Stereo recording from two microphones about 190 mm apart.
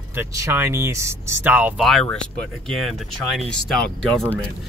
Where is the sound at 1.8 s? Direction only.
Centre (ahead or behind).